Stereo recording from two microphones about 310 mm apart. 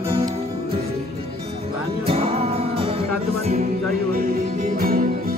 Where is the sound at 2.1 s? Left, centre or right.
Centre.